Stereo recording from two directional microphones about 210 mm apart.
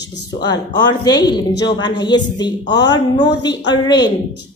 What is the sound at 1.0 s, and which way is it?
A woman's voice, 20° left (ahead or behind).